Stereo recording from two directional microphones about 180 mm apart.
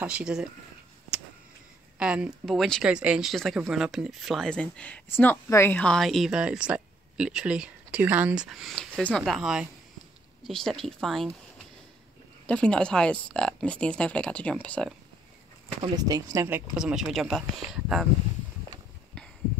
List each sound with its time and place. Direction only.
0.0 s speech: 5° right (ahead or behind)
2.0 s speech: 5° right (ahead or behind)
12.4 s speech: 5° left (ahead or behind)
15.8 s speech: 20° right (ahead or behind)
16.7 s speech: 5° right (ahead or behind)
19.1 s a sound: 5° left (ahead or behind)